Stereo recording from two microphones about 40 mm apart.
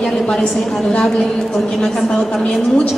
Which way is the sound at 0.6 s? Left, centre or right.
Centre.